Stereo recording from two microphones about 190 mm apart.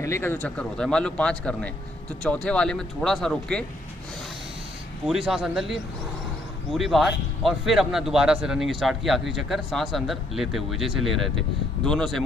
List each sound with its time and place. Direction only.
0.0 s a man's voice: 15° left (ahead or behind)
5.0 s a man's voice: centre (ahead or behind)